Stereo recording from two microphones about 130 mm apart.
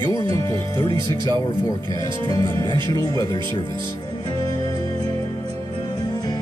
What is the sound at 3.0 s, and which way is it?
Speech, 30° left (ahead or behind).